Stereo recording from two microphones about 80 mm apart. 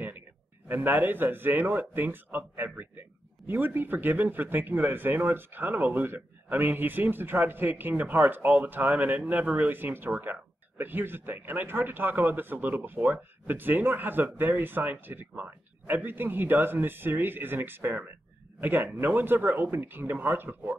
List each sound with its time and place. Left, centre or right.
0.7 s speech: right